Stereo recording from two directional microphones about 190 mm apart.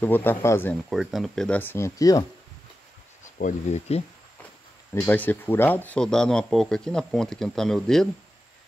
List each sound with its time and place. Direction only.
0.0 s speech: 10° left (ahead or behind)
0.8 s speech: centre (ahead or behind); by 2.2 s 20° left (ahead or behind)
3.3 s speech: 40° left (ahead or behind)
4.9 s speech: 10° left (ahead or behind)